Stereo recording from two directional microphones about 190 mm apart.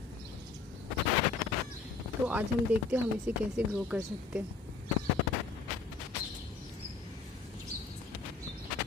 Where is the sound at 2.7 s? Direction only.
10° right (ahead or behind).